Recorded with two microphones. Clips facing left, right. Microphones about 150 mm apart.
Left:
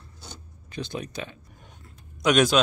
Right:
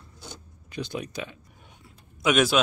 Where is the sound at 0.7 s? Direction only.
10° right (ahead or behind).